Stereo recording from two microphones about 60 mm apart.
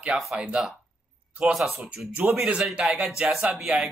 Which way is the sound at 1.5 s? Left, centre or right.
Centre.